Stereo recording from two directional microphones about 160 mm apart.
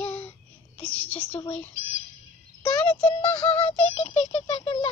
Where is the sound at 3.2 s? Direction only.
35° left (ahead or behind).